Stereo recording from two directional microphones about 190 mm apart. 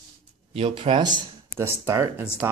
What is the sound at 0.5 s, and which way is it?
Speech, 30° right (ahead or behind).